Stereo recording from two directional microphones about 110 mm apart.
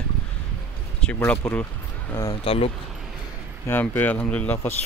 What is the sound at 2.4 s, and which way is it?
Speech, 60° left (ahead or behind).